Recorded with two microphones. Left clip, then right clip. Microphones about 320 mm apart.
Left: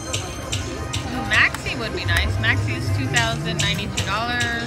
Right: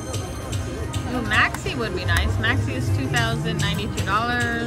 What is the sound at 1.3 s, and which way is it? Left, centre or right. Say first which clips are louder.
Speech: left 2 dB; centre.